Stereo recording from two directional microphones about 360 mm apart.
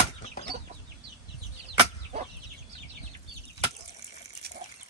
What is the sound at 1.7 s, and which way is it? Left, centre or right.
Chicken, centre.